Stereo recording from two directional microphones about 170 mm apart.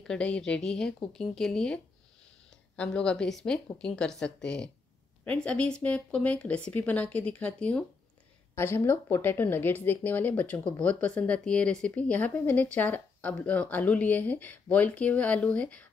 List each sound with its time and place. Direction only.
0.0 s speech: 5° left (ahead or behind)